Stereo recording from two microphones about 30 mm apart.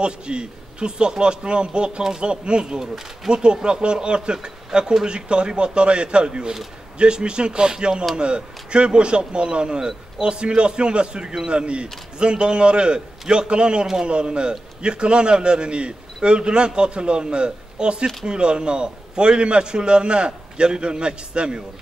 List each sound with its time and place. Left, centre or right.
0.0 s a man's voice: right
9.8 s speech: centre
10.2 s a man's voice: right